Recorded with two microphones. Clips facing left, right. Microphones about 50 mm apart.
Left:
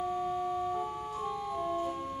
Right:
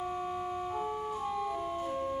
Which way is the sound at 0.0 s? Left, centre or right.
Right.